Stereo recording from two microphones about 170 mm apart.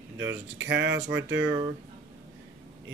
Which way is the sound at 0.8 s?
20° right (ahead or behind).